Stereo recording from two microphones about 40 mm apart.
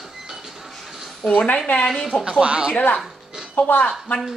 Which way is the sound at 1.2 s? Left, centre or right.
Left.